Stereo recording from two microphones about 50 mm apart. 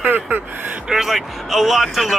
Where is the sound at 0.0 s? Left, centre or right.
Right.